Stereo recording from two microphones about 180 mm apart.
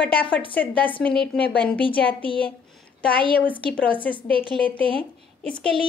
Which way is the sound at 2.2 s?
30° left (ahead or behind).